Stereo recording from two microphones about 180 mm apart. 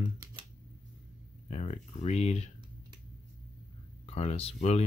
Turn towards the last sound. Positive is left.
turn(degrees=35)  # may be behind; listen again after turning